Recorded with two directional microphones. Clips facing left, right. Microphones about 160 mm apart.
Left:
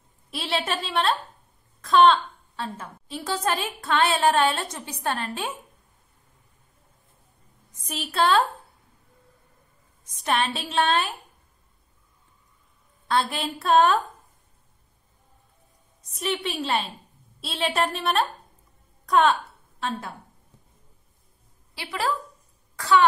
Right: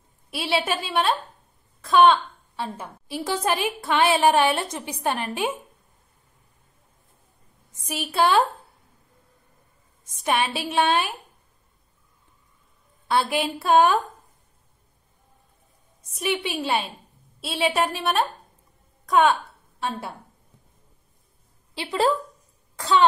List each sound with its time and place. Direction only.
0.3 s a woman's voice: 5° right (ahead or behind)
8.2 s a woman's voice: 10° right (ahead or behind)
10.2 s a woman's voice: 10° right (ahead or behind)
13.1 s a woman's voice: 10° right (ahead or behind)
16.2 s a woman's voice: 10° right (ahead or behind)
19.8 s a woman's voice: 10° right (ahead or behind)
21.7 s a woman's voice: 25° right (ahead or behind)